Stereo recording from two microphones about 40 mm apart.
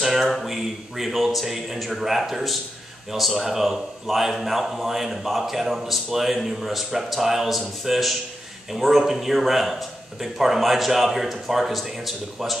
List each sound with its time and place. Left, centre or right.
0.0 s a man's voice: centre